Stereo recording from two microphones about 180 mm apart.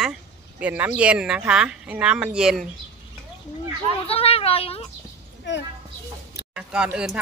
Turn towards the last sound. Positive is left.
turn(degrees=-5)  # may be behind; listen again after turning